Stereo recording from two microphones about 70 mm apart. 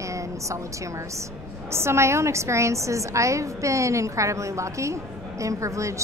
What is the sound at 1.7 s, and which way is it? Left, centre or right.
A woman's voice, right.